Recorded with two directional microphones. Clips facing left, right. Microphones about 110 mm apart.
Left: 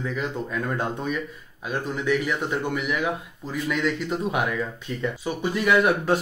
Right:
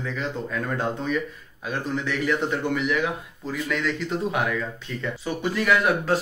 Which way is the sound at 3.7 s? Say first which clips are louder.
Left 2 dB; 10° left (ahead or behind).